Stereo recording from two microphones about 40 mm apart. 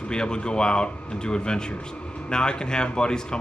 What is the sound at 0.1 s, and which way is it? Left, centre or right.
Speech, left.